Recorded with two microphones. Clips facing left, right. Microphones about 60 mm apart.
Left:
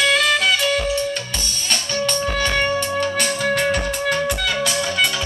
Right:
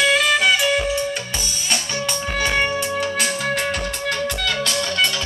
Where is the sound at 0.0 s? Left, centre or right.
Centre.